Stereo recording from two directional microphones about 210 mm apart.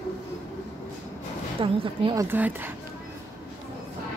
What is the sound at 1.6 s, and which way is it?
Speech, 25° right (ahead or behind).